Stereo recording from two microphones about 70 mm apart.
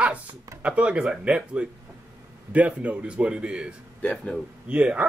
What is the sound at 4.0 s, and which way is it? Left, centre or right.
Speech, centre.